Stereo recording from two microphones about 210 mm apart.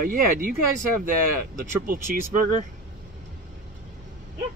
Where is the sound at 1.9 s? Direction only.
40° right (ahead or behind).